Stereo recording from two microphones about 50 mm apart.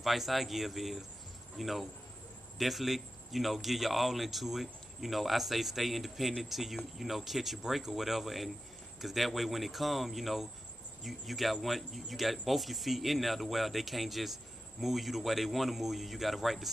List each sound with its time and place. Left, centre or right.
0.0 s speech: centre